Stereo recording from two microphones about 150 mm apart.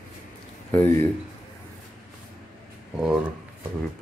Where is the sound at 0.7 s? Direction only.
15° left (ahead or behind).